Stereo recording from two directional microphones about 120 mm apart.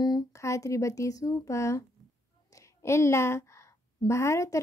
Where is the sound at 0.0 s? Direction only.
30° left (ahead or behind).